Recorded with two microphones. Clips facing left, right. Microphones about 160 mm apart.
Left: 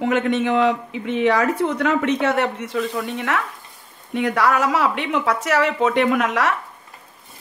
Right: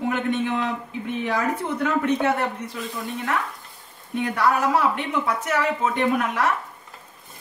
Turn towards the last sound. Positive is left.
turn(degrees=90)